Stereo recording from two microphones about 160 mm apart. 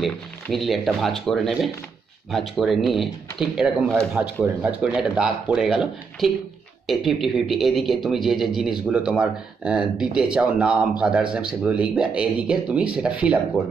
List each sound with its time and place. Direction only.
0.0 s speech: centre (ahead or behind)